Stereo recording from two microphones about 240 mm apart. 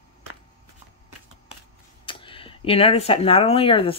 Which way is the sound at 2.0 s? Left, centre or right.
Left.